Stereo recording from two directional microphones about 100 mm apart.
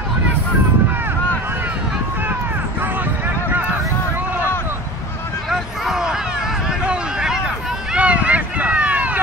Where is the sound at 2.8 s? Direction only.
20° right (ahead or behind).